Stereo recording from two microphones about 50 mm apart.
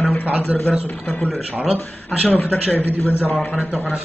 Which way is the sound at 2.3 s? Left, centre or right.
Left.